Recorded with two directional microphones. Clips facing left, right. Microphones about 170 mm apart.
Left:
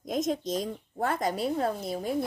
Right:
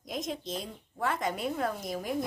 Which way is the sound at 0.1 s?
45° left (ahead or behind).